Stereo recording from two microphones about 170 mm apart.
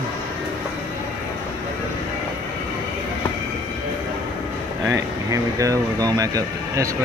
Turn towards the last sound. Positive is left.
turn(degrees=-20)  # may be behind; listen again after turning